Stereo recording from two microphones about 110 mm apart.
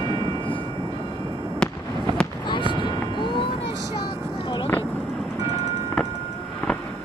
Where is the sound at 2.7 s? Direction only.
45° left (ahead or behind).